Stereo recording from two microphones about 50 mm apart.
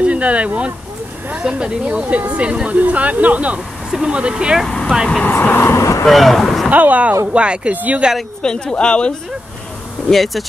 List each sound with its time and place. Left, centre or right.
0.0 s a sound: right
1.4 s speech: right
3.9 s speech: centre
4.6 s vehicle: centre
5.2 s speech: left
5.8 s vehicle: left
6.0 s speech: centre
6.7 s speech: right
7.7 s speech: right
8.4 s speech: centre
10.0 s speech: centre